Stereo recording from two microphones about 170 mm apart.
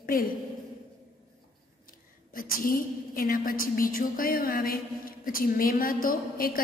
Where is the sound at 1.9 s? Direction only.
55° left (ahead or behind).